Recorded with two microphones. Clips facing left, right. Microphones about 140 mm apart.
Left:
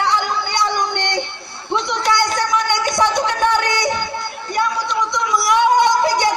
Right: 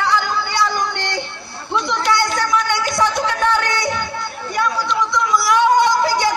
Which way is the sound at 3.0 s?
20° left (ahead or behind).